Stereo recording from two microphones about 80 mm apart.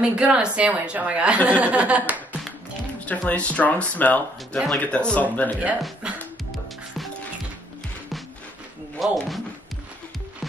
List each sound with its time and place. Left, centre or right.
0.0 s speech: centre
3.1 s speech: centre
6.0 s music: centre
9.0 s speech: centre